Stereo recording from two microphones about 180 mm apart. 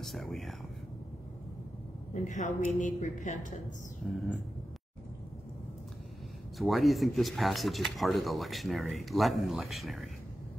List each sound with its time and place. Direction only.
0.0 s speech: centre (ahead or behind)
2.1 s a woman's voice: 45° left (ahead or behind)
6.6 s speech: centre (ahead or behind)